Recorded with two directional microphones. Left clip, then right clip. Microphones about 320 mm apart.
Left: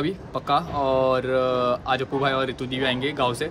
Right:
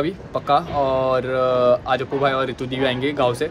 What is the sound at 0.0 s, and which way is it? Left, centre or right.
Speech, centre.